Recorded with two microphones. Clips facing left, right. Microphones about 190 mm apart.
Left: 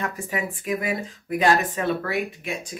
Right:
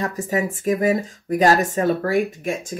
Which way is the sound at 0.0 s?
40° right (ahead or behind).